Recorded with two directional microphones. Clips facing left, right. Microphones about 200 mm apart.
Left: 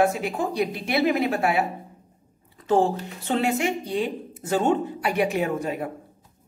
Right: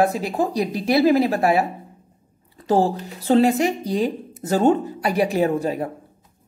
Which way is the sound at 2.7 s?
35° right (ahead or behind).